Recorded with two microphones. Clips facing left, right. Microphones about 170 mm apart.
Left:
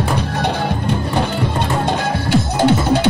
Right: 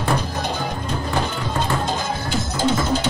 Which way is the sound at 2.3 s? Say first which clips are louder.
Left 7 dB; 65° left (ahead or behind).